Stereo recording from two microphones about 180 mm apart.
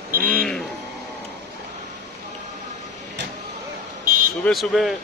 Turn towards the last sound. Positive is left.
turn(degrees=0)  # may be behind; listen again after turning